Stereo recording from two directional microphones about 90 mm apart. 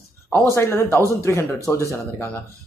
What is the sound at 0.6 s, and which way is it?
Speech, 25° left (ahead or behind).